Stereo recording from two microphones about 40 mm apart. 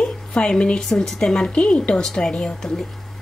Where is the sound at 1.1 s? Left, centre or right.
Centre.